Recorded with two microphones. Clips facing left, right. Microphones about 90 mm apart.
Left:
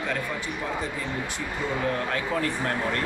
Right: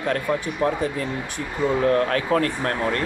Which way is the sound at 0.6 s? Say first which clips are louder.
Right 11 dB; 60° right (ahead or behind).